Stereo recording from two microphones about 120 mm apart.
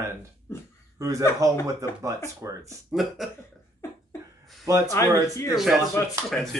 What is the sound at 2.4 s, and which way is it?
Speech, 25° right (ahead or behind).